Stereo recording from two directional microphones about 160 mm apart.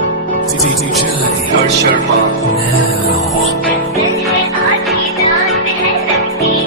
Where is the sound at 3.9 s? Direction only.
Centre (ahead or behind).